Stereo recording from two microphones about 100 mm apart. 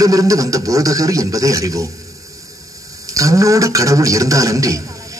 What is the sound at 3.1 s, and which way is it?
A man's voice, 35° right (ahead or behind).